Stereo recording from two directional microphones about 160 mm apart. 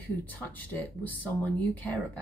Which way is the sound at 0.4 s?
10° left (ahead or behind).